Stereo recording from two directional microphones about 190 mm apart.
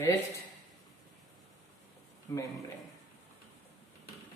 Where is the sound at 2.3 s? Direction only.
20° left (ahead or behind).